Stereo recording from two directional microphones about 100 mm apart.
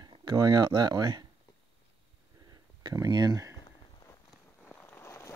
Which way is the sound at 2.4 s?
40° right (ahead or behind).